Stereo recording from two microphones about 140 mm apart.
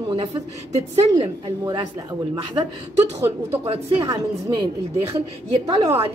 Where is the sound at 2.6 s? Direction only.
30° right (ahead or behind).